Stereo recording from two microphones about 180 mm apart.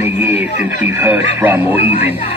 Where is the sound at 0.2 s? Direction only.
10° right (ahead or behind).